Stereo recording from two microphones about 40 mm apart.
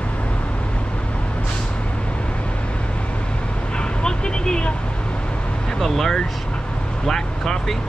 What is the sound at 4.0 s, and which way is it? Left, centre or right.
Vehicle, centre.